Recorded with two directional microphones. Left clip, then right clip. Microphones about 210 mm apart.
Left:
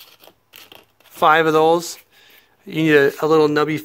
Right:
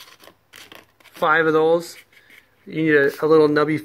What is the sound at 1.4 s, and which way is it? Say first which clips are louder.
Speech: left 2 dB; 25° left (ahead or behind).